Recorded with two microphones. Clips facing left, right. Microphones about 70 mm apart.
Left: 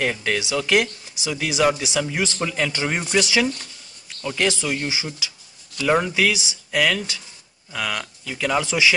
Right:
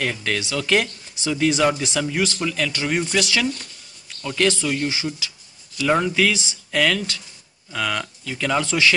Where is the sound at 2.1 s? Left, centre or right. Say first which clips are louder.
Right 1 dB; centre.